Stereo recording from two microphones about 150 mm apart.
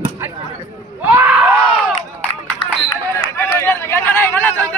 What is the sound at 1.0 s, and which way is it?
Screaming, 15° right (ahead or behind).